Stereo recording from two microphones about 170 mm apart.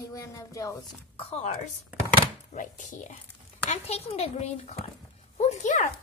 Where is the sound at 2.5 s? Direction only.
45° left (ahead or behind).